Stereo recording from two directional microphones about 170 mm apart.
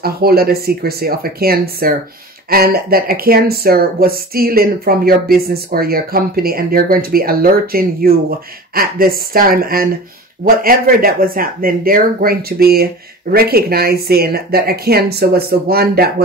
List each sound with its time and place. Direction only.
0.0 s speech: 65° right (ahead or behind)